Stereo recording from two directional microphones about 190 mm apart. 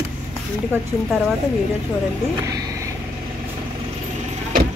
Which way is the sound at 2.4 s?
15° right (ahead or behind).